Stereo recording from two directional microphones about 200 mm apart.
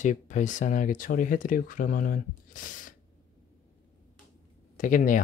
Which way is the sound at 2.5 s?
40° left (ahead or behind).